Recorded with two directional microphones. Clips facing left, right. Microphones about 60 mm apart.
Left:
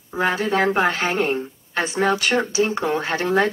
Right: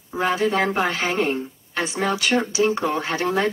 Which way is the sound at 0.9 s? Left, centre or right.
Left.